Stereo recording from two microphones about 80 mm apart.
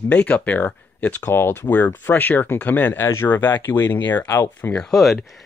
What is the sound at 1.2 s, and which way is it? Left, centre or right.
Speech, left.